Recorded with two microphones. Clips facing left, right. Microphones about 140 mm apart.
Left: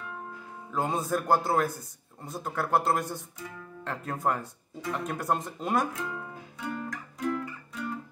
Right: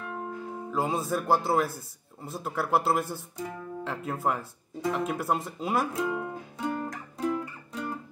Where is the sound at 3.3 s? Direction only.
40° right (ahead or behind).